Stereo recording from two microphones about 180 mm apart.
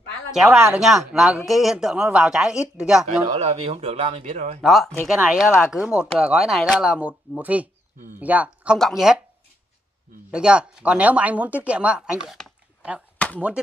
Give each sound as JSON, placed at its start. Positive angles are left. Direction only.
{"t": 0.3, "sound": "speech", "side_deg": 0}
{"t": 3.3, "sound": "speech", "side_deg": -35}
{"t": 4.6, "sound": "speech", "side_deg": 0}
{"t": 10.3, "sound": "speech", "side_deg": -5}
{"t": 12.3, "sound": "a sound", "side_deg": 0}